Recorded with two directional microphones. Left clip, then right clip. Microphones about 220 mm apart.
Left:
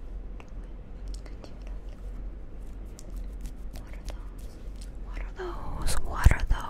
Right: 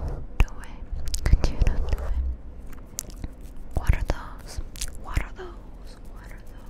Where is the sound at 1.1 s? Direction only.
70° right (ahead or behind).